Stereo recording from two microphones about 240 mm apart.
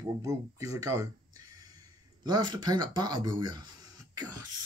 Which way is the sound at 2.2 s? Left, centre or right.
Centre.